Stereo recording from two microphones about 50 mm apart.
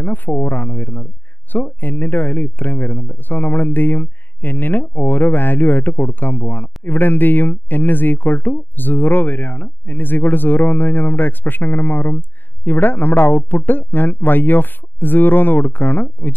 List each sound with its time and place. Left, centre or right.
0.0 s speech: left